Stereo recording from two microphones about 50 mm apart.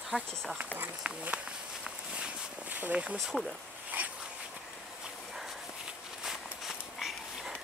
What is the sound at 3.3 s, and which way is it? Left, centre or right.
Speech, centre.